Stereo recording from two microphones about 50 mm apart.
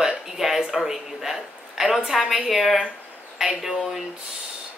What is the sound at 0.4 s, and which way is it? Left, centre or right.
A woman's voice, centre.